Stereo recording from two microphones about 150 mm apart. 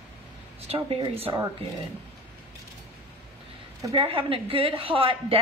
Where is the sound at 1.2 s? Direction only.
25° right (ahead or behind).